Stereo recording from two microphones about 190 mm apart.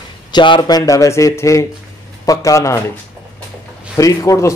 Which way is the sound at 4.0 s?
15° left (ahead or behind).